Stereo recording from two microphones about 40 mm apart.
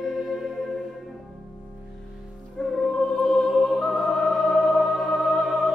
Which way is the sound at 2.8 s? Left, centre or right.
Centre.